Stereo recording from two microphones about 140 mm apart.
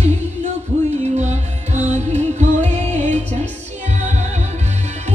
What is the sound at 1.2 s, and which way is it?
Music, 55° right (ahead or behind).